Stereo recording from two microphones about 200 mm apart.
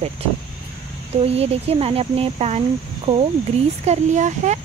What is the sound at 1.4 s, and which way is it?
Speech, 30° right (ahead or behind).